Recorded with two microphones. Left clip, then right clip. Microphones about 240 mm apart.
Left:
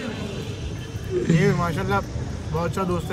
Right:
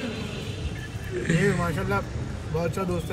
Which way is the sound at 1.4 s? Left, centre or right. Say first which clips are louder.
Left 3 dB; centre.